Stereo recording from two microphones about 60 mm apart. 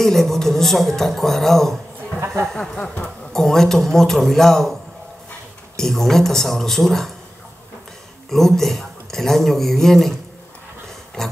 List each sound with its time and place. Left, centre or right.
0.0 s speech: centre
2.1 s a sound: right
2.4 s speech: centre
5.8 s speech: centre
8.3 s speech: centre
11.2 s speech: centre